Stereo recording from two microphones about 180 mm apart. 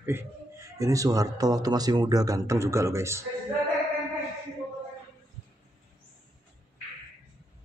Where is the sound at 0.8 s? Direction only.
20° right (ahead or behind).